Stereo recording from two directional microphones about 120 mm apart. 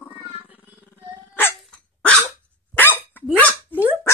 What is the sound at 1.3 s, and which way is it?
Dog, 20° left (ahead or behind).